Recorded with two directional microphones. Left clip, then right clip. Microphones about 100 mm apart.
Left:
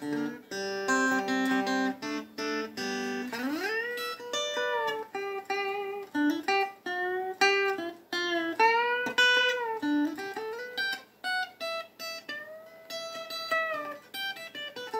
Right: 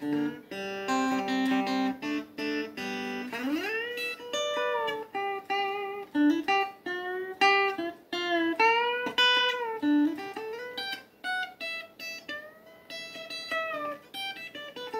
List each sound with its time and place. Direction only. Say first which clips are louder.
0.0 s music: right 2 dB; 40° left (ahead or behind)